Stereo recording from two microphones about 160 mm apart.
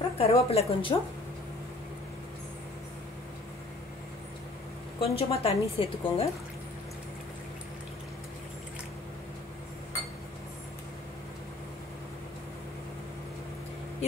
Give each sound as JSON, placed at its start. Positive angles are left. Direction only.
{"t": 0.2, "sound": "a woman's voice", "side_deg": 40}
{"t": 5.0, "sound": "a woman's voice", "side_deg": 40}